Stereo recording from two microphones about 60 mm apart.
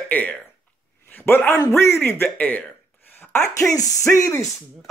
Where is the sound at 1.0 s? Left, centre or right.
Left.